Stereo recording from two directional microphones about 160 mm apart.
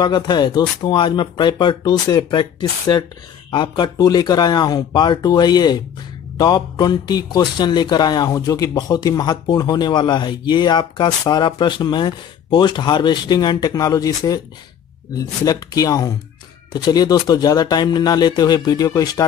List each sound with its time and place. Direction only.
0.0 s a man's voice: 25° left (ahead or behind)
3.5 s a man's voice: 30° left (ahead or behind)